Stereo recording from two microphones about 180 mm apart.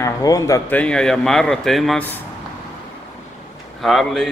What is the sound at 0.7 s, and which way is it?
Speech, 5° left (ahead or behind).